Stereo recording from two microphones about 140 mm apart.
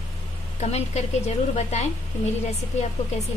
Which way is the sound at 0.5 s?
50° left (ahead or behind).